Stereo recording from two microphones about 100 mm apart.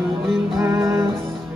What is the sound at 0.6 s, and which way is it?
Music, 25° right (ahead or behind).